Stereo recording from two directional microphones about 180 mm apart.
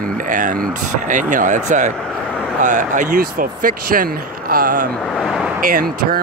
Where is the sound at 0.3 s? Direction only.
45° right (ahead or behind).